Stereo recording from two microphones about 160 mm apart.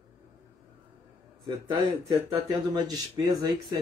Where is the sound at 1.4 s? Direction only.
25° right (ahead or behind).